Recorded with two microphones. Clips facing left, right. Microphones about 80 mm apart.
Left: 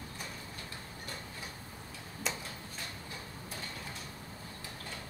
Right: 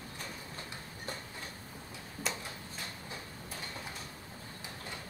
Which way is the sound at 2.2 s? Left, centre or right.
Centre.